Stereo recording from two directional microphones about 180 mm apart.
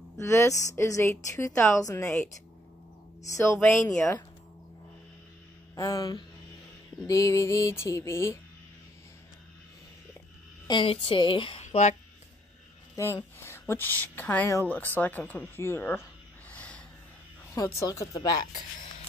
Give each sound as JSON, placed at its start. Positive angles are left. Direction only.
{"t": 0.2, "sound": "a woman's voice", "side_deg": 15}
{"t": 3.6, "sound": "a woman's voice", "side_deg": 15}
{"t": 5.8, "sound": "a woman's voice", "side_deg": 20}
{"t": 10.7, "sound": "speech", "side_deg": 30}
{"t": 11.6, "sound": "speech", "side_deg": 40}
{"t": 12.9, "sound": "a woman's voice", "side_deg": 15}
{"t": 16.4, "sound": "snort", "side_deg": 5}
{"t": 17.6, "sound": "a woman's voice", "side_deg": 15}